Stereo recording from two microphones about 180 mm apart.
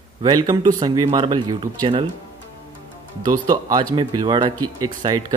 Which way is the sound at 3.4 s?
20° right (ahead or behind).